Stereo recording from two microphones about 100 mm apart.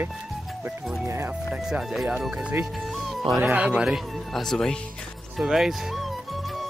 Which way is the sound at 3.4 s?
15° right (ahead or behind).